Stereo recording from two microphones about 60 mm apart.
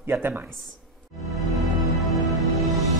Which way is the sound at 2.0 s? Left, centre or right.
Centre.